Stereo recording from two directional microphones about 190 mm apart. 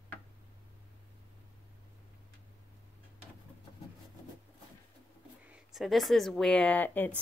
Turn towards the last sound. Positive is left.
turn(degrees=10)  # may be behind; listen again after turning